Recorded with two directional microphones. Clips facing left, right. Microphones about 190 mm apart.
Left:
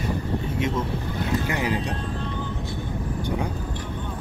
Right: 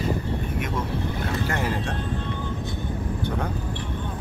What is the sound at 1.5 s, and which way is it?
Music, 15° left (ahead or behind).